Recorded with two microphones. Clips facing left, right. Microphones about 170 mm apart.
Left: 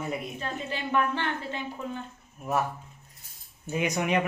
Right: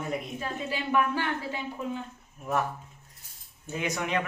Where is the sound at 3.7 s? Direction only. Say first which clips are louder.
Left 4 dB; 15° left (ahead or behind).